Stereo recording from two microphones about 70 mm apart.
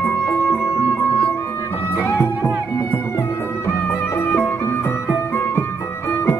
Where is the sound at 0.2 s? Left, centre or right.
Left.